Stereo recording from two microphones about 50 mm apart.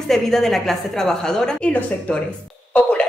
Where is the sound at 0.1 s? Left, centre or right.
Centre.